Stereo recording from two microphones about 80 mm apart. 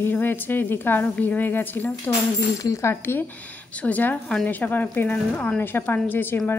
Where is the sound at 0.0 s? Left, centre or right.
Left.